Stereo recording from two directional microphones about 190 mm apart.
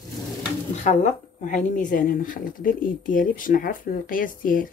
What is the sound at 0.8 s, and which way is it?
Speech, 40° left (ahead or behind).